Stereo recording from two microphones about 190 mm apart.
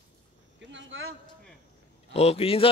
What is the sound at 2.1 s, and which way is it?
Speech, 35° left (ahead or behind).